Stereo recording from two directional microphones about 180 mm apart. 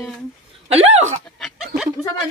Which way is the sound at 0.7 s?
35° right (ahead or behind).